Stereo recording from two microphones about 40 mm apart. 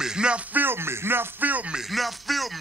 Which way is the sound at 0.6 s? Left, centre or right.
Right.